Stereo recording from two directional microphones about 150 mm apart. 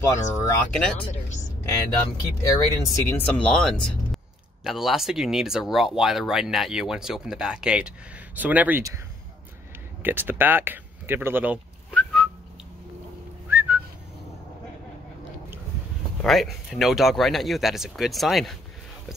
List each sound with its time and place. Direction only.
0.0 s speech: 15° left (ahead or behind)
0.7 s speech: 5° left (ahead or behind)
1.0 s speech: 50° left (ahead or behind)
2.5 s speech: 20° left (ahead or behind)
3.3 s speech: 5° left (ahead or behind); by 8.8 s 10° right (ahead or behind)
10.0 s speech: 15° right (ahead or behind)
11.9 s whistling: centre (ahead or behind)
13.5 s whistling: 15° right (ahead or behind)
16.2 s speech: centre (ahead or behind)